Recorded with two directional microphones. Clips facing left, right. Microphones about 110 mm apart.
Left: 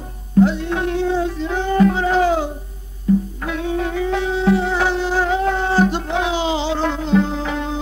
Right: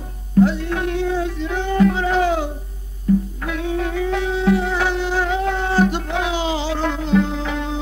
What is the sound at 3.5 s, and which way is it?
Music, 30° left (ahead or behind).